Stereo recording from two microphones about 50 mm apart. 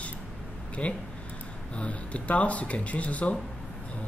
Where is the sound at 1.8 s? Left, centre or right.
Left.